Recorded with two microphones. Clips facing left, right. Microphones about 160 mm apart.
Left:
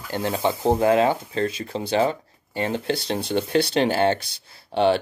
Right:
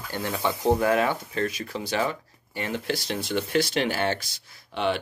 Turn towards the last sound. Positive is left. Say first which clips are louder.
# left 7 dB
turn(degrees=35)  # may be behind; listen again after turning